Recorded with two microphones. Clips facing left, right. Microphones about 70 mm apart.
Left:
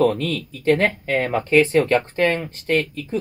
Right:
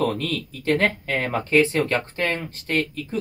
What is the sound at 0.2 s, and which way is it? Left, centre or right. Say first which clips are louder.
Speech: left 3 dB; left.